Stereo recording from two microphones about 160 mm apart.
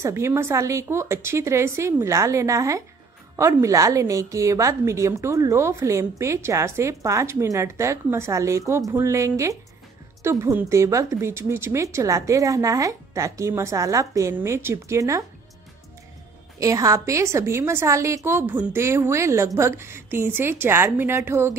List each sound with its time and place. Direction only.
0.0 s a woman's voice: 15° right (ahead or behind)
16.5 s a woman's voice: 20° right (ahead or behind)